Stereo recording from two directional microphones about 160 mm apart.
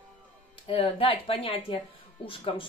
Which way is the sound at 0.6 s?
35° left (ahead or behind).